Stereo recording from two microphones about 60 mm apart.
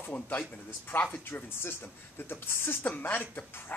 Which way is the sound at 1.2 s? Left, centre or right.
Left.